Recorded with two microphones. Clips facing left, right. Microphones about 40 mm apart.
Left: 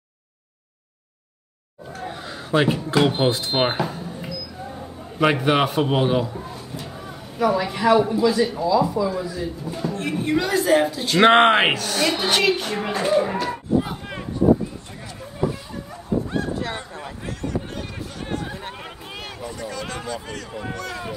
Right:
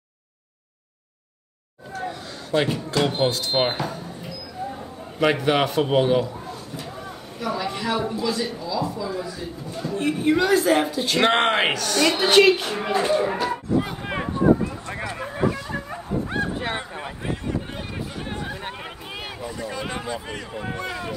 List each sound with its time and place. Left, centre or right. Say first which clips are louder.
2.0 s speech: left 3 dB; centre
5.2 s speech: left 1 dB; centre
7.3 s speech: left 6 dB; centre
9.9 s a man's voice: right 3 dB; centre
11.1 s speech: left 6 dB; centre
12.2 s a man's voice: right 4 dB; centre
14.0 s a sound: right 4 dB; right
14.9 s vehicle: right 7 dB; right
15.7 s bow-wow: left 1 dB; right
16.4 s fowl: even; right
17.6 s a sound: left 1 dB; centre
19.7 s speech: right 1 dB; centre